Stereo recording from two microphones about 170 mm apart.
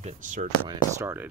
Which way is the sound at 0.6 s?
15° right (ahead or behind).